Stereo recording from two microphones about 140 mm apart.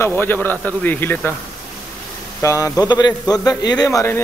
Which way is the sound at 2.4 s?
25° left (ahead or behind).